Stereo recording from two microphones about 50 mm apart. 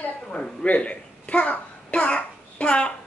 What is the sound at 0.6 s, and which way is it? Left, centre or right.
Babbling, left.